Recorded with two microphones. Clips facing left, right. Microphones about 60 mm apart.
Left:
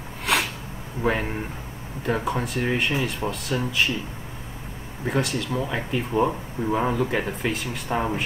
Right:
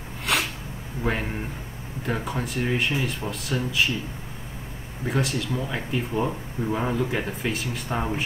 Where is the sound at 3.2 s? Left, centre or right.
Centre.